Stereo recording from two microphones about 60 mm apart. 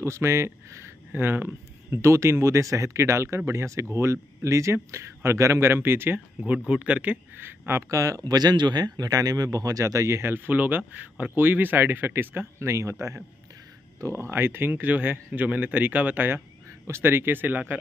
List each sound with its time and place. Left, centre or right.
0.0 s speech: right
2.0 s speech: right
6.4 s speech: right
7.3 s speech: right
7.9 s speech: right
10.3 s speech: right
12.6 s speech: right
14.1 s speech: right
16.8 s speech: right